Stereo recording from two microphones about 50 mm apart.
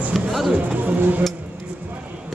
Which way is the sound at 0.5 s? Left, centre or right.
Right.